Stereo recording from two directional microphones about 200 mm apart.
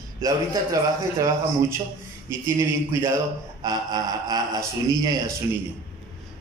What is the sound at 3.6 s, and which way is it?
Speech, 20° right (ahead or behind).